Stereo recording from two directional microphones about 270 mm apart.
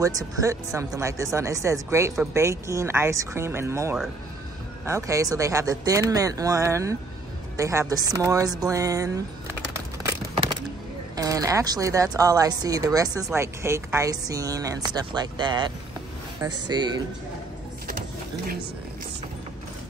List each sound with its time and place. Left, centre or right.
0.0 s speech: centre
11.1 s speech: centre
16.4 s speech: right